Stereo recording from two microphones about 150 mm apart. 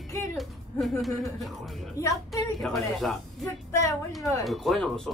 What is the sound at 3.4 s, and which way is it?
Speech, 20° left (ahead or behind).